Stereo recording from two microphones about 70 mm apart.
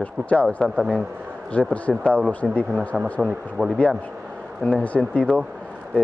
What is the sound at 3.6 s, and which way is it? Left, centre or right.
Speech, centre.